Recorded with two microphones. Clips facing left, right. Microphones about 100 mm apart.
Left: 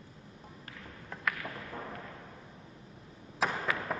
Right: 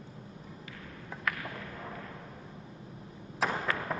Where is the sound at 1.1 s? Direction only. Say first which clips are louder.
Even; 5° right (ahead or behind).